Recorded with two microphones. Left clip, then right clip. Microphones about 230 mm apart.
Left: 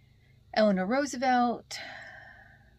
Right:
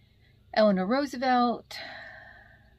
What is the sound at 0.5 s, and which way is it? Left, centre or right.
Speech, centre.